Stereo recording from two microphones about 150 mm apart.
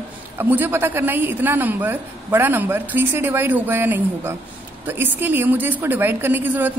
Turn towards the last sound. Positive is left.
turn(degrees=-10)  # may be behind; listen again after turning